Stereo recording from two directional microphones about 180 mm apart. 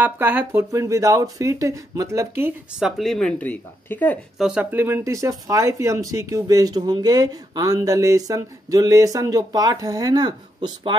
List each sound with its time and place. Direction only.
0.0 s speech: 10° right (ahead or behind)
2.8 s speech: centre (ahead or behind)
4.4 s speech: 5° right (ahead or behind); by 11.0 s 25° right (ahead or behind)